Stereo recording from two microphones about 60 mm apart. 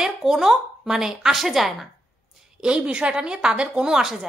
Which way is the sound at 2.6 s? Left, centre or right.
Centre.